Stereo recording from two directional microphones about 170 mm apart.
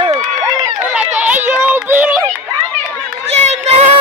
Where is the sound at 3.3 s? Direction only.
40° right (ahead or behind).